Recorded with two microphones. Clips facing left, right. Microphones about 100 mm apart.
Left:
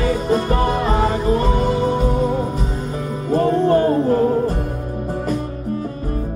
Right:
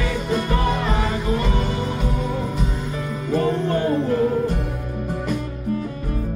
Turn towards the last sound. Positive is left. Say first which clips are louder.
# left 3 dB
turn(degrees=40)  # may be behind; listen again after turning